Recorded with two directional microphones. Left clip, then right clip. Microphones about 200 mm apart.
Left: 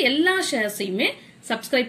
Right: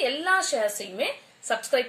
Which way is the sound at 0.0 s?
15° right (ahead or behind).